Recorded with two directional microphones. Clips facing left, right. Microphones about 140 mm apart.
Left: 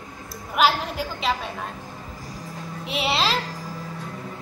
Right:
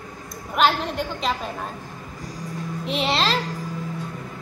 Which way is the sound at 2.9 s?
5° left (ahead or behind).